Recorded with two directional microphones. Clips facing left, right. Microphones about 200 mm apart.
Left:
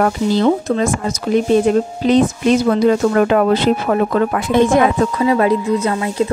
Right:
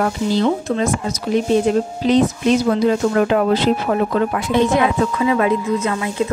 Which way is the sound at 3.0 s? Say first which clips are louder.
Left 3 dB; 55° left (ahead or behind).